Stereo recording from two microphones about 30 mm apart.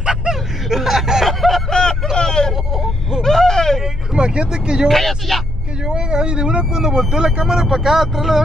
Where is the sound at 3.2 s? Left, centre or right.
Centre.